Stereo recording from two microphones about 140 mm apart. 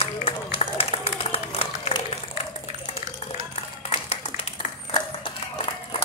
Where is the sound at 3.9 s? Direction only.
45° left (ahead or behind).